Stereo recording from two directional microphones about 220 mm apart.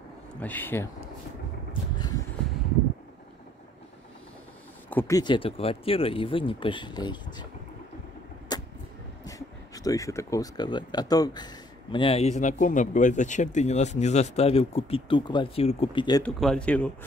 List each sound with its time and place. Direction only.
0.4 s speech: 10° left (ahead or behind)
2.0 s a sound: 20° left (ahead or behind)
4.8 s speech: 10° left (ahead or behind)
8.5 s vehicle: 15° left (ahead or behind)
9.8 s speech: 15° left (ahead or behind)
16.2 s speech: 5° left (ahead or behind)